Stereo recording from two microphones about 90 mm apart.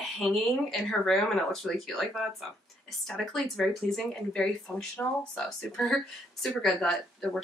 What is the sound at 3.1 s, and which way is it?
Speech, 5° left (ahead or behind).